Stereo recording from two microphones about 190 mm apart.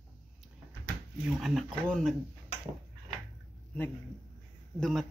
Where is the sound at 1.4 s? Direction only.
Centre (ahead or behind).